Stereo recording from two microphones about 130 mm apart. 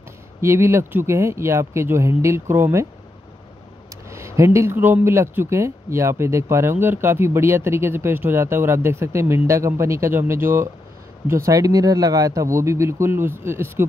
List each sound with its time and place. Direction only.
0.4 s speech: 20° right (ahead or behind)
4.1 s speech: 20° right (ahead or behind)